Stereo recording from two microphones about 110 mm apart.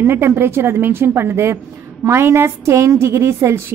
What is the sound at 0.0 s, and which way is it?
A woman's voice, 20° right (ahead or behind).